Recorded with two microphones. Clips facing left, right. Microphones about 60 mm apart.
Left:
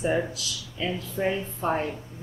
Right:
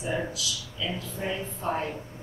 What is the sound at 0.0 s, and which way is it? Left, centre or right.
A man's voice, left.